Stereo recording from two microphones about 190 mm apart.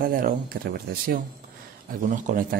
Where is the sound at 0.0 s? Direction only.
50° right (ahead or behind).